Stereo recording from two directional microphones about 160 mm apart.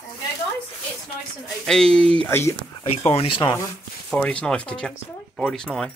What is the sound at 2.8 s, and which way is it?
Speech, 40° left (ahead or behind).